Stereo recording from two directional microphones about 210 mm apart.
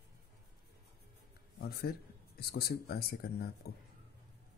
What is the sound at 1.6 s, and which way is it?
Speech, 50° left (ahead or behind).